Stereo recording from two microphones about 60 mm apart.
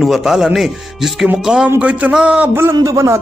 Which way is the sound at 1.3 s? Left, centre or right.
Centre.